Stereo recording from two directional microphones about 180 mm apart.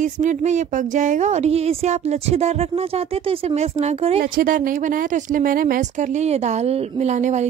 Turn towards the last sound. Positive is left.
turn(degrees=-40)  # may be behind; listen again after turning